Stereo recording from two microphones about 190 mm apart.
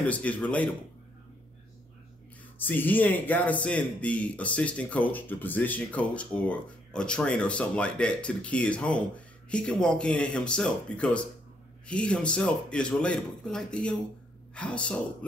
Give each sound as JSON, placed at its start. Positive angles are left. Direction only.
{"t": 0.0, "sound": "speech", "side_deg": 5}
{"t": 2.6, "sound": "speech", "side_deg": 10}